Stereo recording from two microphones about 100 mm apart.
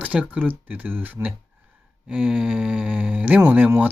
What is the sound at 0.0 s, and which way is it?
Speech, 10° right (ahead or behind).